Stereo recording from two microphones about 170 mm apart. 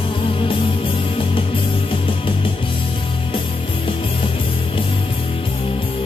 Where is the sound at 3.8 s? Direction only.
30° left (ahead or behind).